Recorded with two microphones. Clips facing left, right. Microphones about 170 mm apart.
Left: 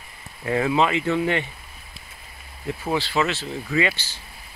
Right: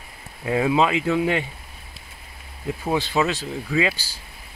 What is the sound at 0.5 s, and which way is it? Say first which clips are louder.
Speech: right 1 dB; 10° right (ahead or behind).